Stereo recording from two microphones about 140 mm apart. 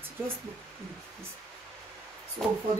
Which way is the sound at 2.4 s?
Centre (ahead or behind).